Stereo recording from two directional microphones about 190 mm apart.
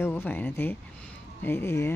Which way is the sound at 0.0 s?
10° left (ahead or behind).